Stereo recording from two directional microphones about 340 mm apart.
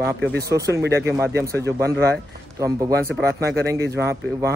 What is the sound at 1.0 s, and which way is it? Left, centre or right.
Speech, centre.